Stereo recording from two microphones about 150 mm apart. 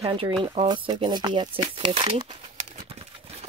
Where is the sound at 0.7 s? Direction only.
30° right (ahead or behind).